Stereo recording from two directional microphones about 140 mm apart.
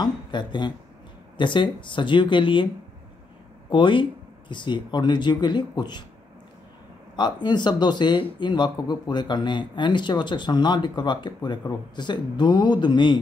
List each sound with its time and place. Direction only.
0.0 s speech: 35° left (ahead or behind)
3.7 s speech: 35° left (ahead or behind)
7.2 s speech: 30° left (ahead or behind)